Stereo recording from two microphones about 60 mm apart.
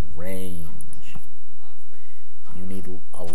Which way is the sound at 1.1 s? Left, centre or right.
Left.